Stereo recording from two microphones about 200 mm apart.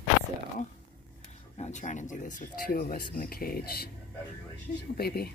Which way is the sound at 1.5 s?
35° left (ahead or behind).